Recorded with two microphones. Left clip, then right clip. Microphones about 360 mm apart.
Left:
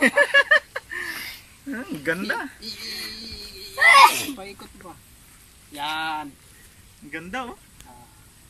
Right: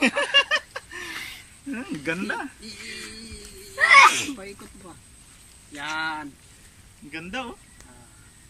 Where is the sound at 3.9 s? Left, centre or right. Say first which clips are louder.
Even; centre.